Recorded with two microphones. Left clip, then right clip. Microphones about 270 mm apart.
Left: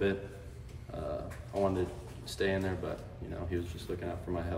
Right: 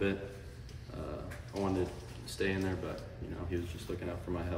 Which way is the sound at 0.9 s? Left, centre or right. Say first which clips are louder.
Left 5 dB; centre.